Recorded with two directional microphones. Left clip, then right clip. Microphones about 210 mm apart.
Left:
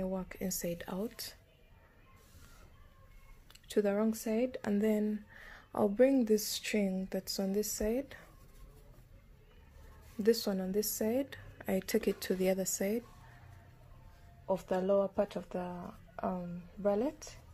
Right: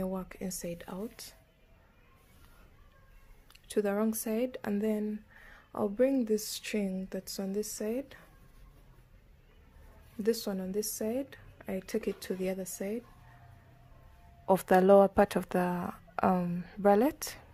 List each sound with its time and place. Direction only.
0.0 s speech: 10° right (ahead or behind)
3.6 s speech: 5° right (ahead or behind)
10.2 s a woman's voice: centre (ahead or behind)
14.4 s speech: 40° right (ahead or behind)